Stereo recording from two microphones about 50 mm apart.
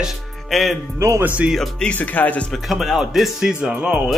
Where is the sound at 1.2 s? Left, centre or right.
Right.